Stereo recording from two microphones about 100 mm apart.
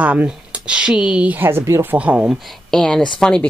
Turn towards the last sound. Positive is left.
turn(degrees=5)  # may be behind; listen again after turning